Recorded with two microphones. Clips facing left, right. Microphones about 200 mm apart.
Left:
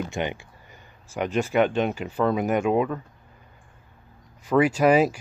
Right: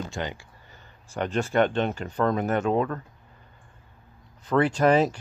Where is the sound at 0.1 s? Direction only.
20° left (ahead or behind).